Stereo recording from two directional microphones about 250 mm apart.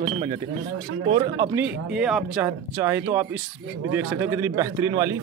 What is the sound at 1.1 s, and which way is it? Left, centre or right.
Speech, right.